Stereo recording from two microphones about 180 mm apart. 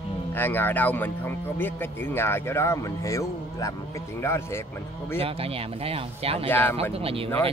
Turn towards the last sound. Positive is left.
turn(degrees=-30)  # may be behind; listen again after turning